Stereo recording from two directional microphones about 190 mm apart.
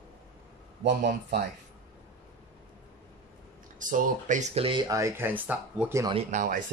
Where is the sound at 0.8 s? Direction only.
65° right (ahead or behind).